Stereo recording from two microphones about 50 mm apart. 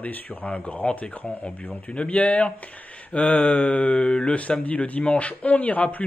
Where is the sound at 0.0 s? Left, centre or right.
Left.